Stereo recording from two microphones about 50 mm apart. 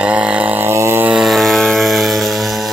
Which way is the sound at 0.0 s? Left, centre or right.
Right.